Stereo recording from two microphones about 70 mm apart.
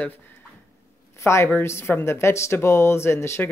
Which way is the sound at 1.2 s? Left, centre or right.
Left.